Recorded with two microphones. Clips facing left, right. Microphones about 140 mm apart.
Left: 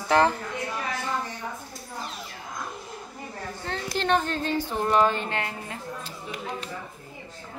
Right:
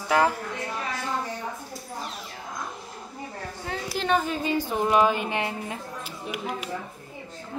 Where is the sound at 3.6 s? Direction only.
5° right (ahead or behind).